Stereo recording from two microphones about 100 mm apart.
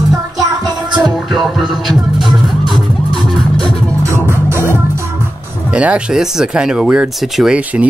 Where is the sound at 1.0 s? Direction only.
Centre (ahead or behind).